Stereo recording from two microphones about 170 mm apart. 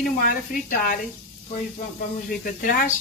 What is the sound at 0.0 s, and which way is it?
Speech, 55° left (ahead or behind).